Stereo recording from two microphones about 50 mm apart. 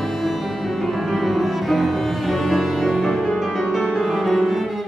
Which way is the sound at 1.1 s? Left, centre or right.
Centre.